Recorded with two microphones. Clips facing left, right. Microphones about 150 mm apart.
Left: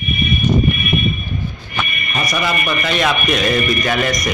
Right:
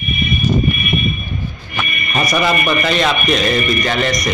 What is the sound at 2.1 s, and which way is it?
Speech, 35° right (ahead or behind).